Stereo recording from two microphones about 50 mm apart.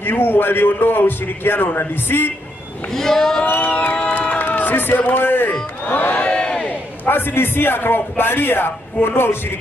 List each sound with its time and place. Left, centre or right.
0.0 s a man's voice: left
2.9 s speech: centre
3.4 s music: left
4.2 s crowd: left
6.1 s crowd: left
6.7 s a man's voice: left